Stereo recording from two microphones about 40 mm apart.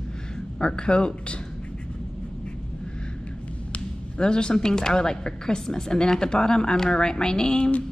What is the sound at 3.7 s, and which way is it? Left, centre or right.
Speech, left.